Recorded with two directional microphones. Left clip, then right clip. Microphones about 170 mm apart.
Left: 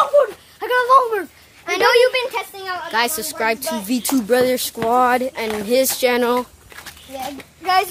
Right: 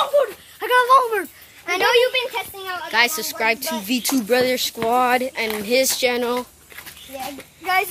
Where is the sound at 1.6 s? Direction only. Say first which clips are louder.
Left 3 dB; 25° right (ahead or behind).